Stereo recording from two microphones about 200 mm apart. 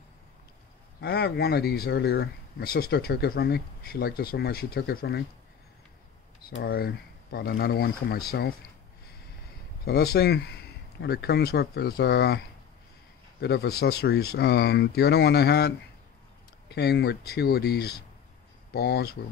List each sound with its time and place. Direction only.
1.0 s speech: 55° left (ahead or behind)
6.6 s speech: 50° left (ahead or behind)
9.8 s speech: 50° left (ahead or behind)
13.4 s speech: 55° left (ahead or behind)